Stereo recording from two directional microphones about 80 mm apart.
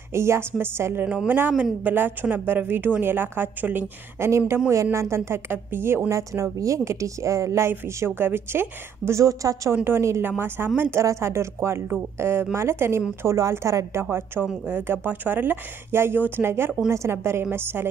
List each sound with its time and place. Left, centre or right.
0.1 s a woman's voice: right
1.0 s a woman's voice: centre; by 7.7 s right
8.0 s speech: right
9.2 s a woman's voice: right
14.0 s a woman's voice: right